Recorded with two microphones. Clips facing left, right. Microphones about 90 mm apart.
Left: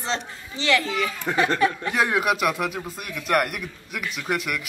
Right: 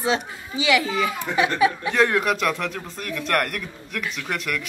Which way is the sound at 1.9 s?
10° left (ahead or behind).